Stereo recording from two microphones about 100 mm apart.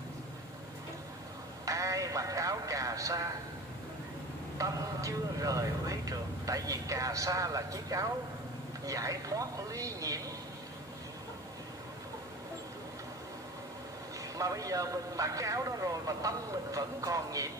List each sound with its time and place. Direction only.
1.7 s music: 35° right (ahead or behind)
4.6 s speech: 35° right (ahead or behind)
14.3 s speech: 35° right (ahead or behind)